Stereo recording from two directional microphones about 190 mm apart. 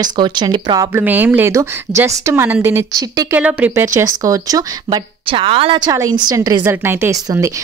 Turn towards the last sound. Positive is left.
turn(degrees=-15)  # may be behind; listen again after turning